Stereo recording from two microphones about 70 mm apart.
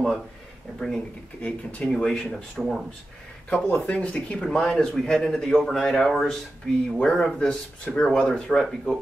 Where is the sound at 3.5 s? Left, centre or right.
Centre.